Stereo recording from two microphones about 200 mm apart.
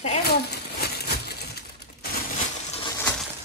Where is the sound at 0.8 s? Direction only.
50° left (ahead or behind).